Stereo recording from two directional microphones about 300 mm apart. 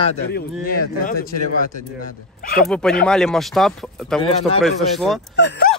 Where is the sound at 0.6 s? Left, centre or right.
Left.